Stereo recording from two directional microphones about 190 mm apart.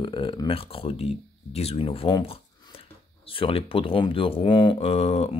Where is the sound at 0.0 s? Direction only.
25° left (ahead or behind).